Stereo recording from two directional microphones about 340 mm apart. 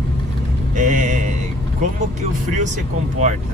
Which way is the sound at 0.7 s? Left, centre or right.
Right.